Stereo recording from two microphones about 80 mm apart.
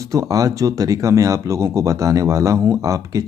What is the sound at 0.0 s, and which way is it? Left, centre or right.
Speech, right.